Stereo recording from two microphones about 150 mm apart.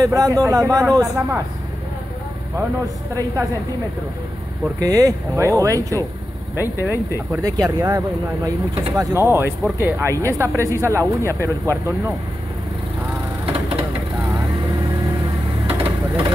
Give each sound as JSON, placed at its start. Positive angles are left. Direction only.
{"t": 0.0, "sound": "speech", "side_deg": -25}
{"t": 2.5, "sound": "speech", "side_deg": -20}
{"t": 4.7, "sound": "speech", "side_deg": -25}
{"t": 7.3, "sound": "speech", "side_deg": -25}
{"t": 13.5, "sound": "a sound", "side_deg": -40}
{"t": 15.6, "sound": "vehicle", "side_deg": -40}